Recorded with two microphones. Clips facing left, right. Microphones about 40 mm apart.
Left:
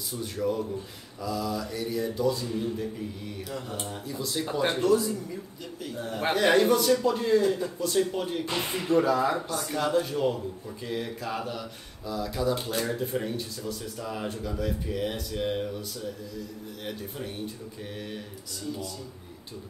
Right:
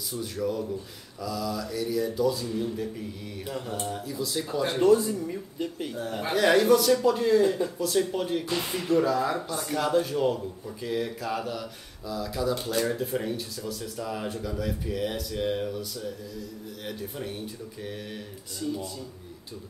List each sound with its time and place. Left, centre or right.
0.1 s speech: centre
4.5 s speech: left
4.7 s speech: right
5.9 s speech: centre
7.4 s speech: centre
7.8 s speech: centre
8.5 s speech: centre
9.5 s speech: centre